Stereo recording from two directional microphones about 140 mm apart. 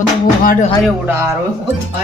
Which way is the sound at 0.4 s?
90° left.